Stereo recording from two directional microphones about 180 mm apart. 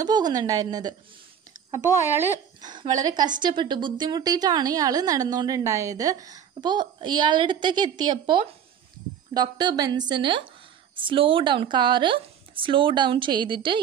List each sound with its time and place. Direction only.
0.0 s a woman's voice: 20° right (ahead or behind)